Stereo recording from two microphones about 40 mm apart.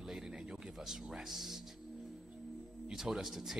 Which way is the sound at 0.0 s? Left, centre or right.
Centre.